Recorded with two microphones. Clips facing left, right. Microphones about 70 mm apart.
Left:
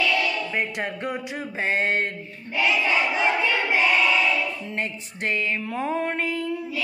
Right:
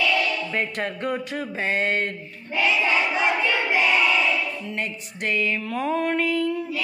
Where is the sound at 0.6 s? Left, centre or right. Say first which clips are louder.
Right 1 dB; centre.